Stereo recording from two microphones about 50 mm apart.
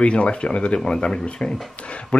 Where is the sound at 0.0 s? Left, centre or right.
Left.